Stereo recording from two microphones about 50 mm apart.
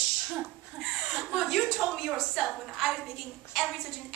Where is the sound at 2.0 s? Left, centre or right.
Centre.